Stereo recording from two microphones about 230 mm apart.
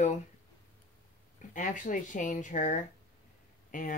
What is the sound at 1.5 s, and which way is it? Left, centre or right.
Speech, left.